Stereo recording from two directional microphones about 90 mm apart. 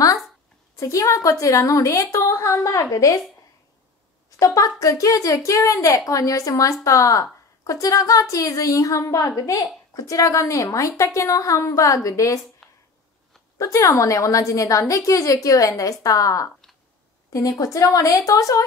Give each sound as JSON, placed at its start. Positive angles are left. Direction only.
{"t": 0.7, "sound": "speech", "side_deg": 35}
{"t": 4.4, "sound": "speech", "side_deg": 40}
{"t": 12.6, "sound": "a sound", "side_deg": 0}
{"t": 13.6, "sound": "a woman's voice", "side_deg": 35}